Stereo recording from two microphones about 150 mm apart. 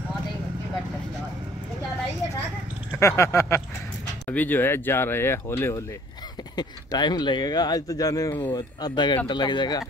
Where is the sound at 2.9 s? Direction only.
20° left (ahead or behind).